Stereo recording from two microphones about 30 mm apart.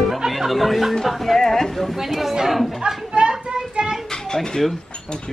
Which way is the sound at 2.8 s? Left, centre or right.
Right.